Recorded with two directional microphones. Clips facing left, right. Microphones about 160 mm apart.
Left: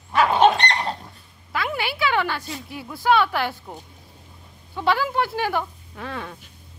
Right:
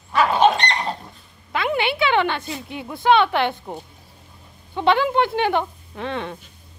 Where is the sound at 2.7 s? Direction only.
20° right (ahead or behind).